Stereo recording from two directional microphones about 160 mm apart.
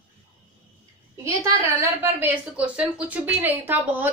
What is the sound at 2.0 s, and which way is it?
A woman's voice, 10° right (ahead or behind).